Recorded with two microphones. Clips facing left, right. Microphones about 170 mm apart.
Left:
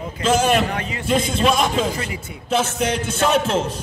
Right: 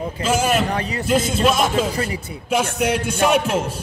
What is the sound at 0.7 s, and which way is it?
Speech, 35° right (ahead or behind).